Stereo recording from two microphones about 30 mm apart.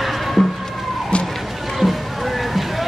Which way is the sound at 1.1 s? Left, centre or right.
Left.